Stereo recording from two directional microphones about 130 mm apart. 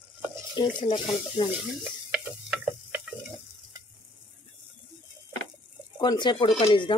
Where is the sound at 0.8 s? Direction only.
35° left (ahead or behind).